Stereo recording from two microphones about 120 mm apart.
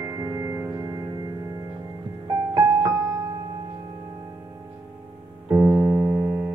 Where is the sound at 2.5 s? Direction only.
25° right (ahead or behind).